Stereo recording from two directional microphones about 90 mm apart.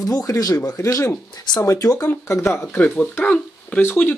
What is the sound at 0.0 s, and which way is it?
Speech, 40° left (ahead or behind).